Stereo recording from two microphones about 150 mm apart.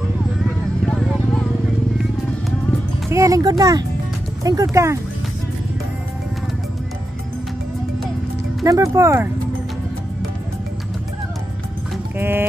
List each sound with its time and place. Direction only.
0.8 s clip-clop: centre (ahead or behind)
3.1 s music: 20° right (ahead or behind)
4.4 s speech: 25° right (ahead or behind)
8.6 s speech: 20° right (ahead or behind)
12.2 s music: 15° right (ahead or behind)